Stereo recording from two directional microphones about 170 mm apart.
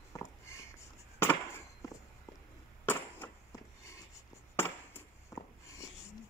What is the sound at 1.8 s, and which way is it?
Walk, 20° left (ahead or behind).